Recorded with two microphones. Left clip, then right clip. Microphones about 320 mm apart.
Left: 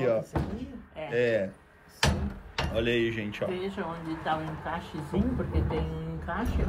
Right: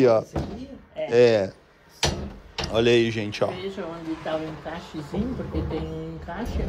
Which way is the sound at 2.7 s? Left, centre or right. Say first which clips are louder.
Right 8 dB; centre.